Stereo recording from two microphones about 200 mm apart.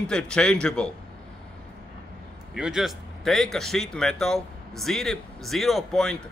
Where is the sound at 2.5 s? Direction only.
Centre (ahead or behind).